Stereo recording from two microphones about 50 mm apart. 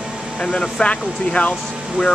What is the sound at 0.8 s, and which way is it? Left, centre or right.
Speech, left.